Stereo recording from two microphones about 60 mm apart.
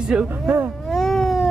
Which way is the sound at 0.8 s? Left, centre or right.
Centre.